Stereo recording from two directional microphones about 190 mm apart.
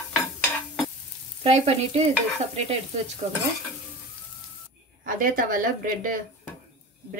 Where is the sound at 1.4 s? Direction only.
35° right (ahead or behind).